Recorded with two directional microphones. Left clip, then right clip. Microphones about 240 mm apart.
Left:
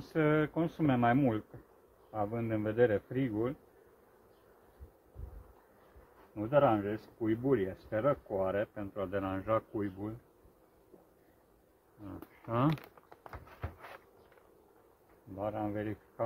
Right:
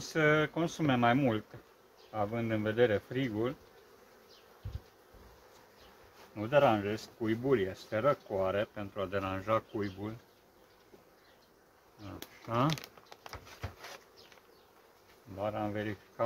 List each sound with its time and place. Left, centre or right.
0.1 s speech: centre
6.3 s speech: centre
12.4 s a sound: centre
15.3 s speech: centre